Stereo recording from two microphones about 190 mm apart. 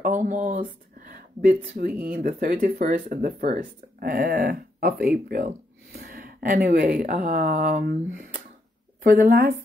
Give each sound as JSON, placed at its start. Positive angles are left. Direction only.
{"t": 0.0, "sound": "speech", "side_deg": -40}